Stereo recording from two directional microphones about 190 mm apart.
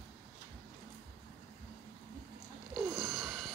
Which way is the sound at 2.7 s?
Centre (ahead or behind).